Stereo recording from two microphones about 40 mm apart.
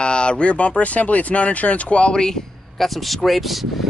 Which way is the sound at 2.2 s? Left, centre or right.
Centre.